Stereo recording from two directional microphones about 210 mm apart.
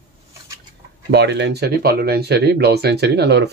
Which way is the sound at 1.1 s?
55° right (ahead or behind).